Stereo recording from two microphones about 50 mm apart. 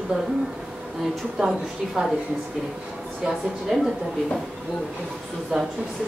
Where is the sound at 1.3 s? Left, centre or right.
Centre.